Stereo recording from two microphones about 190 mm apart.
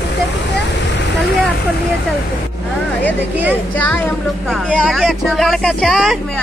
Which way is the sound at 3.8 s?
10° left (ahead or behind).